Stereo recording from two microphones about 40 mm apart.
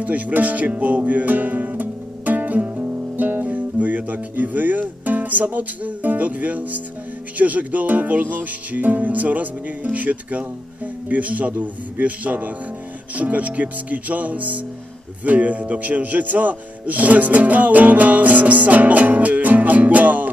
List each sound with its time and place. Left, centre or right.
0.0 s music: right
11.1 s speech: right
11.5 s music: right
13.1 s speech: right